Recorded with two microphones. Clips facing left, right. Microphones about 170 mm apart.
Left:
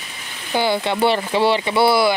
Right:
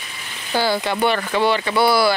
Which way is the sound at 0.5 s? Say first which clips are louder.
Left 1 dB; 20° left (ahead or behind).